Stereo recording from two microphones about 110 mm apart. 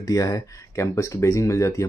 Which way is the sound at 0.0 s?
30° left (ahead or behind).